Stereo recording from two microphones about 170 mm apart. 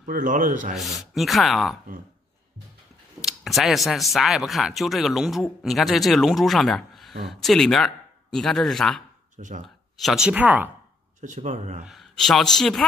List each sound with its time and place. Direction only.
0.0 s speech: 50° right (ahead or behind)
1.1 s speech: centre (ahead or behind)
3.2 s speech: centre (ahead or behind)
9.4 s speech: 50° right (ahead or behind)
9.9 s speech: centre (ahead or behind)
11.1 s speech: 45° right (ahead or behind)
11.8 s speech: centre (ahead or behind)